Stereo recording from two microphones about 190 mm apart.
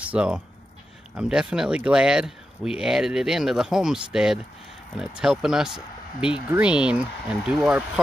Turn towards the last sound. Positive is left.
turn(degrees=-5)  # may be behind; listen again after turning